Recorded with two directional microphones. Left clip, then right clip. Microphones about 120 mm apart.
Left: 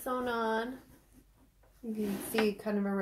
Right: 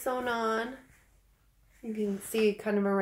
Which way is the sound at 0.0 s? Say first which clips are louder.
Right 3 dB; 20° right (ahead or behind).